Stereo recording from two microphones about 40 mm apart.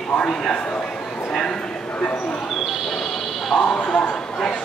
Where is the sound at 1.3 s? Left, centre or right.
Centre.